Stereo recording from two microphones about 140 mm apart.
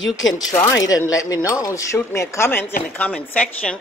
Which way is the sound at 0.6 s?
25° left (ahead or behind).